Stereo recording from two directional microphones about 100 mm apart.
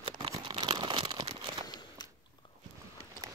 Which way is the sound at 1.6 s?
45° left (ahead or behind).